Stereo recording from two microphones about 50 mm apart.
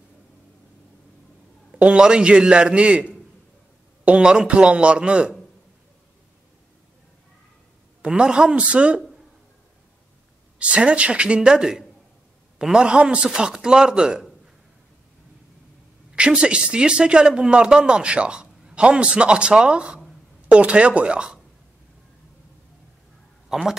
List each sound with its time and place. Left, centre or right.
1.8 s speech: centre
8.0 s speech: centre
10.6 s speech: right
16.2 s speech: right
23.5 s speech: centre